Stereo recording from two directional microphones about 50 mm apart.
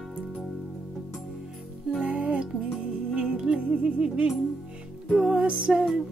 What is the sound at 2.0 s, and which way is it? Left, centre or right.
Music, right.